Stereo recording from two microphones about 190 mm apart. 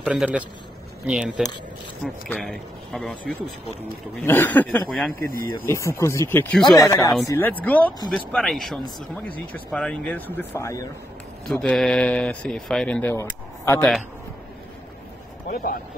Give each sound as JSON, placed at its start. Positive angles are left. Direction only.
{"t": 0.0, "sound": "a man's voice", "side_deg": -5}
{"t": 11.4, "sound": "speech", "side_deg": 5}
{"t": 15.4, "sound": "speech", "side_deg": 50}